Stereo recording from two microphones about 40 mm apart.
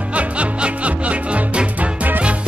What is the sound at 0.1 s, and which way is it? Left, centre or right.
Music, right.